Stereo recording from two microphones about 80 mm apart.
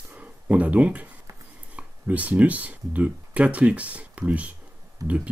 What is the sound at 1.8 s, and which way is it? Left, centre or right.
Speech, centre.